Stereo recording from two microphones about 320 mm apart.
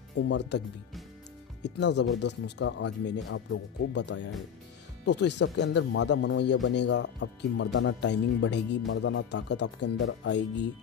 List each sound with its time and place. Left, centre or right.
0.3 s speech: left
1.6 s speech: left